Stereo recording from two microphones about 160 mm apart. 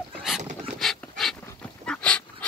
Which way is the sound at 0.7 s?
Centre (ahead or behind).